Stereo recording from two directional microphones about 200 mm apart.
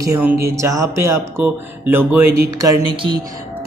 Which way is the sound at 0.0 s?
10° right (ahead or behind).